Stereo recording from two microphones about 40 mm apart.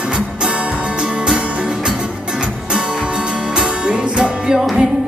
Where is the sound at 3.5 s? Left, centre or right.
Right.